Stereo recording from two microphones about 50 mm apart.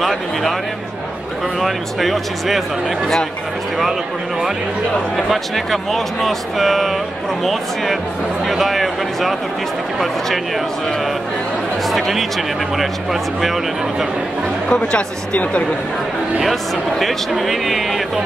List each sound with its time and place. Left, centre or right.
0.0 s speech: centre
1.6 s speech: centre
5.1 s speech: centre
11.9 s speech: centre
14.7 s speech: left
17.0 s speech: centre